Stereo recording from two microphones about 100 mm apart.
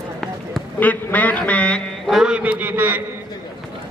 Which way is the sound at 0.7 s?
15° left (ahead or behind).